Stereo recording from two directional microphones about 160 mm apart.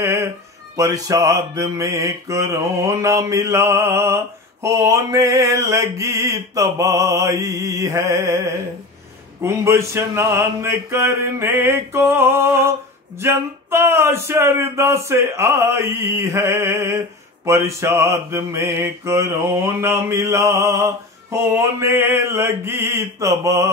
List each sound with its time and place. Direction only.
0.0 s speech: 20° right (ahead or behind)
0.7 s mantra: 20° right (ahead or behind)
9.4 s mantra: 15° right (ahead or behind)